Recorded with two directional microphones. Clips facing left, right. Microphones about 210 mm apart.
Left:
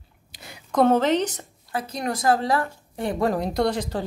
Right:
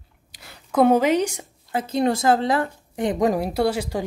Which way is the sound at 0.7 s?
10° right (ahead or behind).